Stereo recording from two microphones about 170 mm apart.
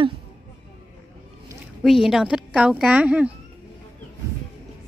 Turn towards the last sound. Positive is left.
turn(degrees=-5)  # may be behind; listen again after turning